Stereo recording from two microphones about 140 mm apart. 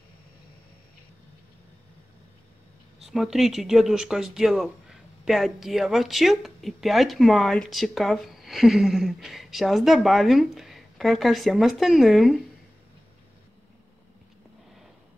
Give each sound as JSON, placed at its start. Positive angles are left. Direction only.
{"t": 3.1, "sound": "speech", "side_deg": 0}